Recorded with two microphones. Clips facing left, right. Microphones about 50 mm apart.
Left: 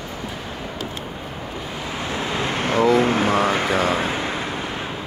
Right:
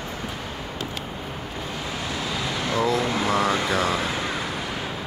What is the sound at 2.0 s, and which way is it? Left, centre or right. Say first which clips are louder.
Vehicle: left 5 dB; left.